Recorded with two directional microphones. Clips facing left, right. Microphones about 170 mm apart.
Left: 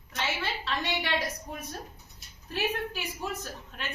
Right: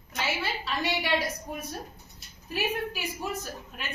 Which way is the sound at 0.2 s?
5° right (ahead or behind).